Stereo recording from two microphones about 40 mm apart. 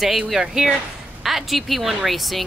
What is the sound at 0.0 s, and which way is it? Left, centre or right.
Speech, centre.